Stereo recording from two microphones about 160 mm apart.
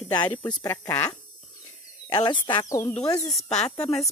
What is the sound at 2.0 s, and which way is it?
Speech, 30° left (ahead or behind).